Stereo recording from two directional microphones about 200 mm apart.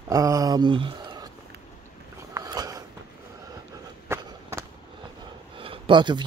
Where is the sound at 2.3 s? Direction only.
20° right (ahead or behind).